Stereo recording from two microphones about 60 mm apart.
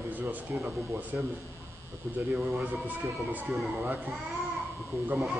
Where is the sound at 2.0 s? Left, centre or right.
Centre.